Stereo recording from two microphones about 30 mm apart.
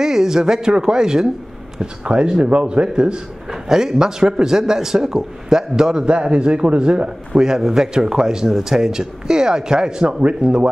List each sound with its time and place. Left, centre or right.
0.0 s a man's voice: centre
2.0 s a man's voice: right
3.4 s a man's voice: centre
6.0 s a man's voice: right
7.4 s a man's voice: centre